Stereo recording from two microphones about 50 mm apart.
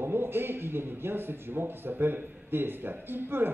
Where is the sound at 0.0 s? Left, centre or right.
Right.